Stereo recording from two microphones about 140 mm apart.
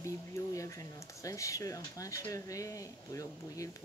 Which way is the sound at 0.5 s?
20° left (ahead or behind).